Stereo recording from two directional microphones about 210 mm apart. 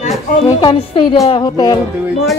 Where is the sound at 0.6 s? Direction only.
20° left (ahead or behind).